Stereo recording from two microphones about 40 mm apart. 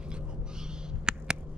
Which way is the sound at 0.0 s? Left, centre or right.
Right.